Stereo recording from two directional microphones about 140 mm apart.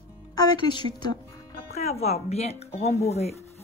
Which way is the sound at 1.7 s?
50° left (ahead or behind).